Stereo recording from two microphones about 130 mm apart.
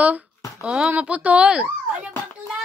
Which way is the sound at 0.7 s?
10° right (ahead or behind).